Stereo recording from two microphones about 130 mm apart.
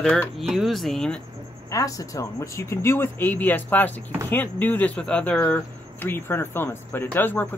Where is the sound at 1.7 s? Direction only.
25° left (ahead or behind).